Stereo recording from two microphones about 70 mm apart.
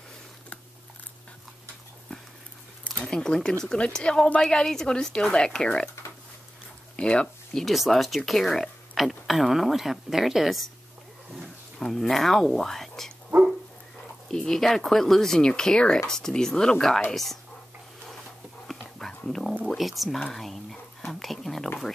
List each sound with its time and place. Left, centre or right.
3.0 s a woman's voice: centre
7.0 s speech: centre
7.6 s speech: centre
11.8 s speech: centre
14.3 s a woman's voice: centre
18.7 s dog: centre
19.7 s speech: centre